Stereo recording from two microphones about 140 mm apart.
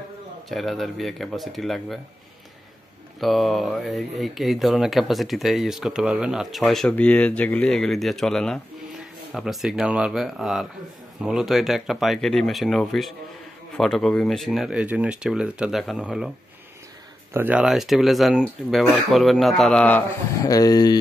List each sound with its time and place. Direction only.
0.5 s speech: centre (ahead or behind)
3.2 s speech: centre (ahead or behind)
17.3 s speech: 15° right (ahead or behind); by 20.0 s 5° left (ahead or behind)
20.4 s speech: 25° left (ahead or behind)